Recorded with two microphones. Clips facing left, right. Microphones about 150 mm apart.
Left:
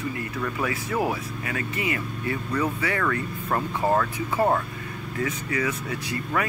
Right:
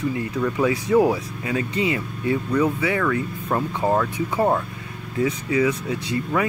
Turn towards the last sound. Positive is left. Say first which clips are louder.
# right 5 dB
turn(degrees=-10)  # may be behind; listen again after turning